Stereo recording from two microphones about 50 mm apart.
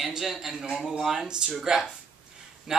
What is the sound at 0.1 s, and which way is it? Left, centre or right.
Speech, centre.